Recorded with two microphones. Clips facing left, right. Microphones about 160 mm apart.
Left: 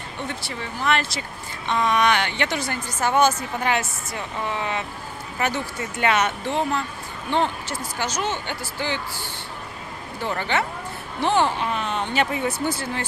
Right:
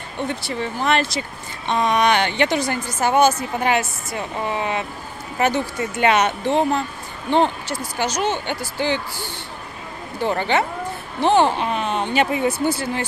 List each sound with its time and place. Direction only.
0.8 s speech: 20° right (ahead or behind)
5.9 s speech: 20° right (ahead or behind)
10.2 s speech: 25° right (ahead or behind)